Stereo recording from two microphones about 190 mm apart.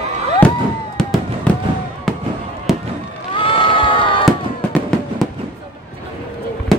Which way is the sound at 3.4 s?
25° left (ahead or behind).